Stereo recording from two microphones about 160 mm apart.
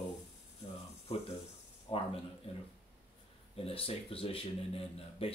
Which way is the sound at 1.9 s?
35° left (ahead or behind).